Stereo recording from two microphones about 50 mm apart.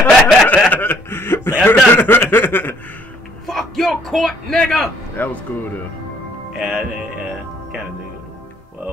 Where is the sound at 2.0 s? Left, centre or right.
Left.